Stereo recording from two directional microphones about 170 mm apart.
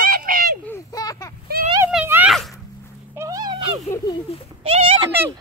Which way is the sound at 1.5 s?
65° right (ahead or behind).